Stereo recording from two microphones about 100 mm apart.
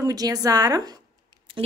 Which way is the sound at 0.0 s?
40° right (ahead or behind).